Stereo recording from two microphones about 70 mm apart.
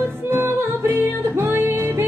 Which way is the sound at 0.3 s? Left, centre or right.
Right.